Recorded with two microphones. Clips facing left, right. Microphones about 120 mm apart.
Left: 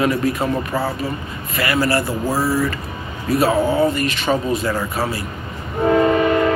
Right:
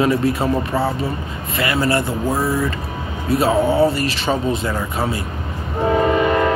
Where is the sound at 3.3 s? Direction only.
25° right (ahead or behind).